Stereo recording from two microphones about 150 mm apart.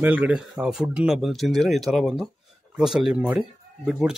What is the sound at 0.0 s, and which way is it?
Speech, 10° right (ahead or behind).